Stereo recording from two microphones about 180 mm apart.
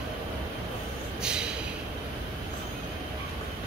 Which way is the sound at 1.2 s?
5° right (ahead or behind).